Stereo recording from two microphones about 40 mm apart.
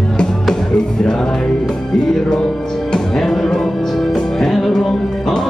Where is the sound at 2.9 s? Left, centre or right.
Centre.